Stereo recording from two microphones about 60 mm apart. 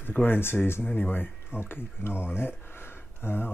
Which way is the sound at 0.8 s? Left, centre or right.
Left.